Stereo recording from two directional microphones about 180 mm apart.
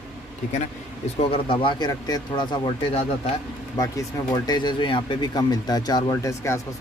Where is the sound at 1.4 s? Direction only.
25° left (ahead or behind).